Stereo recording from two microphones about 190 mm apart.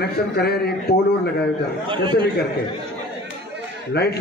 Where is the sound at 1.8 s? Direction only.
25° right (ahead or behind).